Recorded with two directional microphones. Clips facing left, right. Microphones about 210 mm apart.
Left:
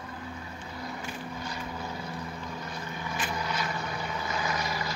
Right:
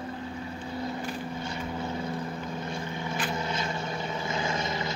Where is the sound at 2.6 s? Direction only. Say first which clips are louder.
Right 4 dB; 25° right (ahead or behind).